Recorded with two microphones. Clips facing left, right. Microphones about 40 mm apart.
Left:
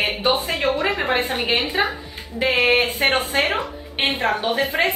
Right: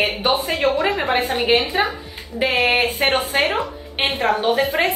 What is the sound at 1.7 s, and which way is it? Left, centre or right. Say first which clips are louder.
Speech: right 1 dB; centre.